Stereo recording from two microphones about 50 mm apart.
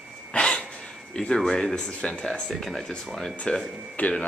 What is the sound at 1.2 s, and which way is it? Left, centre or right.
Speech, centre.